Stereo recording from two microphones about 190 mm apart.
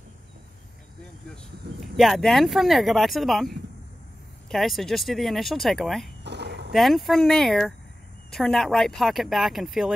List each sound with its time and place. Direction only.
2.0 s speech: centre (ahead or behind)
6.2 s a sound: 65° right (ahead or behind)
6.7 s speech: centre (ahead or behind)